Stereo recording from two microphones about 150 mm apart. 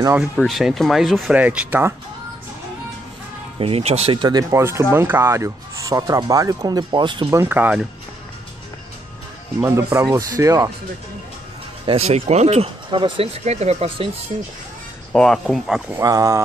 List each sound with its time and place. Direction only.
0.2 s speech: centre (ahead or behind)
3.5 s speech: 40° right (ahead or behind)
7.2 s speech: 15° right (ahead or behind)
9.6 s speech: 20° right (ahead or behind)
11.8 s speech: 40° right (ahead or behind)
15.1 s speech: 5° left (ahead or behind)
16.0 s speech: 25° right (ahead or behind)